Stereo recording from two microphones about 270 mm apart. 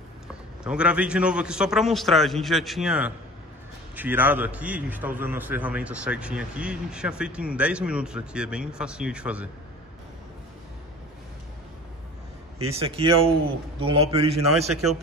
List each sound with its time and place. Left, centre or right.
0.7 s a man's voice: centre
12.7 s a man's voice: right